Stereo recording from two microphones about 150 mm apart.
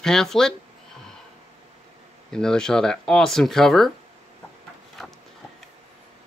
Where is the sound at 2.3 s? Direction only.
5° left (ahead or behind).